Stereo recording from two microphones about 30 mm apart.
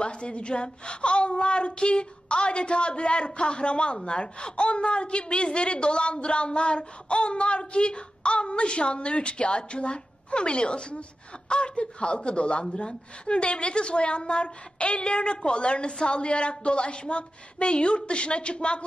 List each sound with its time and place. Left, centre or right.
0.0 s a woman's voice: left